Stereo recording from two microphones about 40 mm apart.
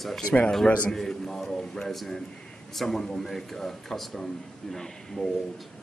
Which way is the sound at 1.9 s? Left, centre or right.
Centre.